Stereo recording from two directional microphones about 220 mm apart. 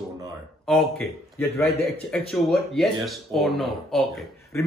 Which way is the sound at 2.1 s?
Centre (ahead or behind).